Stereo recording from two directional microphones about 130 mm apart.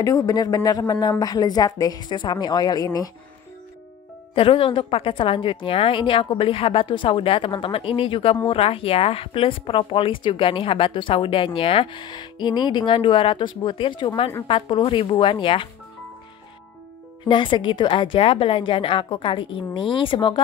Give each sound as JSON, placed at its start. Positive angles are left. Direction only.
{"t": 0.0, "sound": "a woman's voice", "side_deg": 25}
{"t": 4.4, "sound": "a woman's voice", "side_deg": 45}
{"t": 17.3, "sound": "a woman's voice", "side_deg": 40}